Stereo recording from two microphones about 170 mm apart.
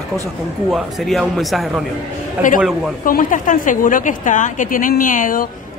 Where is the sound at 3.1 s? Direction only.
50° left (ahead or behind).